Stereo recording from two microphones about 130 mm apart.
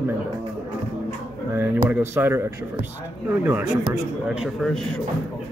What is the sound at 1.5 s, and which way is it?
A man's voice, 20° right (ahead or behind).